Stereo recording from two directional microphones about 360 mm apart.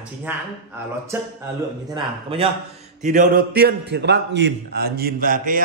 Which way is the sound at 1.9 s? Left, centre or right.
Centre.